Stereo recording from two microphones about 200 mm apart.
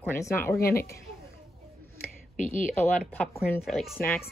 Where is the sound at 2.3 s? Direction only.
40° left (ahead or behind).